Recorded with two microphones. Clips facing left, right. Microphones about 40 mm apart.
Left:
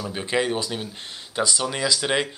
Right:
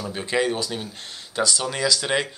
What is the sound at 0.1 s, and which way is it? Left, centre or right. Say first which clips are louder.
Speech: right 1 dB; centre.